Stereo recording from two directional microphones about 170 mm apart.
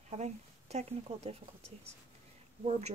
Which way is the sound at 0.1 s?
40° right (ahead or behind).